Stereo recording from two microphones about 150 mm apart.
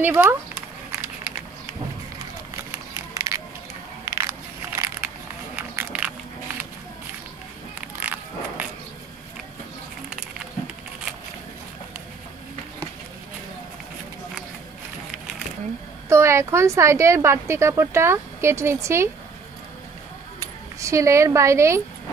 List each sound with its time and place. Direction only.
0.0 s a woman's voice: 15° right (ahead or behind)
3.2 s crushing: 20° right (ahead or behind)
4.0 s a sound: 20° right (ahead or behind)
5.6 s biting: 15° right (ahead or behind)
8.0 s biting: 10° right (ahead or behind)
16.1 s a woman's voice: 20° right (ahead or behind)
20.8 s a woman's voice: 20° right (ahead or behind)